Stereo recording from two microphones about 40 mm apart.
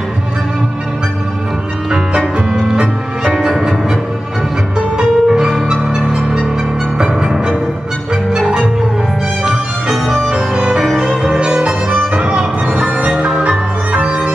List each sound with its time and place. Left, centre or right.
1.9 s music: centre
11.3 s music: right